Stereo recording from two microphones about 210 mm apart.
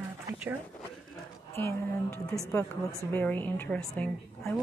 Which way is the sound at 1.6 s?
15° left (ahead or behind).